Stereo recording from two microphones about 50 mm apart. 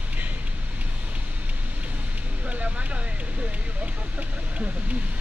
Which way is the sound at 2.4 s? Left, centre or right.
Right.